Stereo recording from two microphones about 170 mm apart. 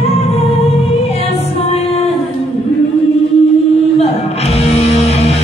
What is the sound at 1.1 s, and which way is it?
Music, 35° left (ahead or behind).